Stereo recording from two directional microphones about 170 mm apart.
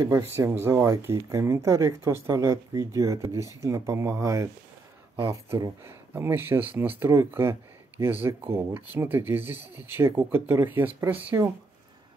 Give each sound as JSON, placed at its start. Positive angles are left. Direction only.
{"t": 0.0, "sound": "speech", "side_deg": -15}